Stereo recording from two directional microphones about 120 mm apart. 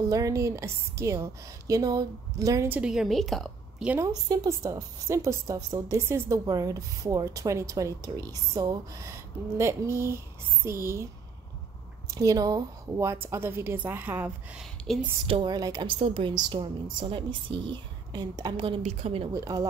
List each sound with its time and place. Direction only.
0.1 s a woman's voice: 25° right (ahead or behind)
2.7 s a woman's voice: 5° right (ahead or behind)
4.0 s a woman's voice: 30° right (ahead or behind)
12.1 s a woman's voice: 30° right (ahead or behind)
14.6 s speech: 5° right (ahead or behind)
15.2 s a woman's voice: 45° right (ahead or behind)
15.9 s a woman's voice: 50° right (ahead or behind); by 18.6 s 35° right (ahead or behind)
18.8 s a woman's voice: 60° right (ahead or behind)
19.3 s a woman's voice: 30° right (ahead or behind)